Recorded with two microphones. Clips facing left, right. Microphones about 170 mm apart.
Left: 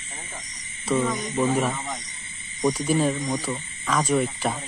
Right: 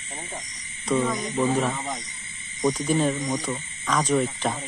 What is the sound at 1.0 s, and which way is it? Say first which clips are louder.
Speech: even; 5° right (ahead or behind).